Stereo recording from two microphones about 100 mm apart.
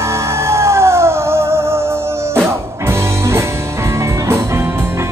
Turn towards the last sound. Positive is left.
turn(degrees=-25)  # may be behind; listen again after turning